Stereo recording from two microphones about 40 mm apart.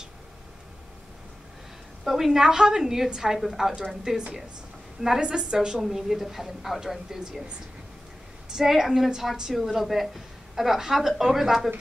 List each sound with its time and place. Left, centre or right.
2.0 s a woman's voice: centre
5.8 s a woman's voice: centre
8.5 s a woman's voice: centre